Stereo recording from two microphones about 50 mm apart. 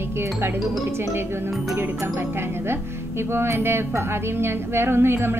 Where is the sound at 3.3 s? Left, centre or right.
Right.